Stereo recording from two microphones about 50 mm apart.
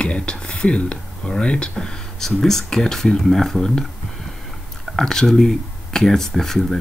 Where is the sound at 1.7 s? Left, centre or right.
Centre.